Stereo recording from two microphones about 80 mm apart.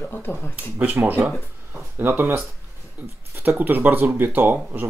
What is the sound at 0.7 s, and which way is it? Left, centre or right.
Speech, right.